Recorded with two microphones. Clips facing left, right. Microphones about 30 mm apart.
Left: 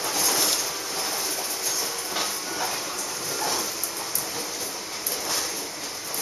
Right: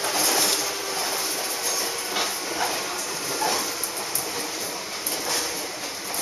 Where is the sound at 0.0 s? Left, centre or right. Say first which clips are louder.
Right 2 dB; centre.